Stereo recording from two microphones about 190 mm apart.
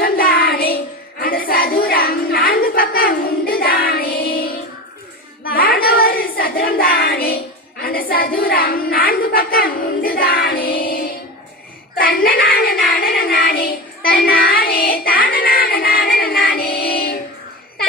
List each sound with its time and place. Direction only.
0.0 s child singing: 50° left (ahead or behind)
1.2 s a sound: 50° left (ahead or behind)
12.0 s child singing: 50° left (ahead or behind)